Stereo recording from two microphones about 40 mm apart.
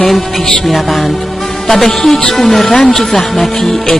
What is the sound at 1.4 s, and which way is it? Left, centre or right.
Music, centre.